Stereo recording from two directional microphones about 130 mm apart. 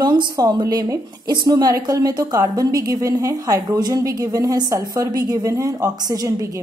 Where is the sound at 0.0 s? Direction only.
30° right (ahead or behind).